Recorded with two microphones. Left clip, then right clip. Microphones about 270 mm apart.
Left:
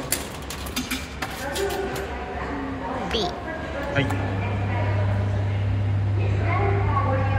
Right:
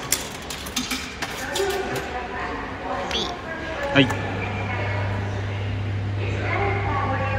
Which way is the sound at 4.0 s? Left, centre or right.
Centre.